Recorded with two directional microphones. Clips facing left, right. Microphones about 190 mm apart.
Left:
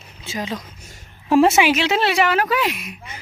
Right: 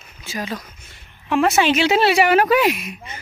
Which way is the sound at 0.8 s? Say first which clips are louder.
Left 8 dB; 35° left (ahead or behind).